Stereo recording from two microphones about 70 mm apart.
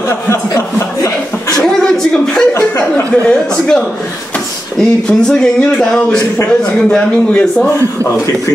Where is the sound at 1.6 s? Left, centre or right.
Centre.